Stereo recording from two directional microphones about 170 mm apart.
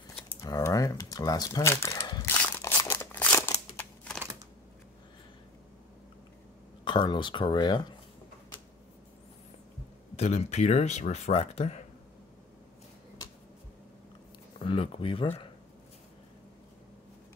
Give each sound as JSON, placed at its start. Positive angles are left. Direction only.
{"t": 0.4, "sound": "crumpling", "side_deg": 20}
{"t": 2.2, "sound": "crumpling", "side_deg": 10}
{"t": 6.8, "sound": "speech", "side_deg": 25}
{"t": 10.1, "sound": "speech", "side_deg": 40}
{"t": 14.6, "sound": "speech", "side_deg": 30}